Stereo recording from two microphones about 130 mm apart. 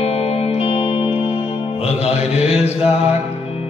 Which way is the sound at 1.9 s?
55° left (ahead or behind).